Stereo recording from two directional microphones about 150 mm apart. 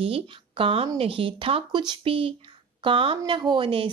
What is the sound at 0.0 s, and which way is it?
Speech, 40° right (ahead or behind).